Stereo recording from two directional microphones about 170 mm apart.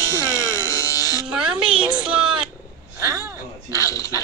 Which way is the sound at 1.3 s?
5° right (ahead or behind).